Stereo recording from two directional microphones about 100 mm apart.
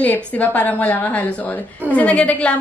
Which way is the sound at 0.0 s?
15° left (ahead or behind).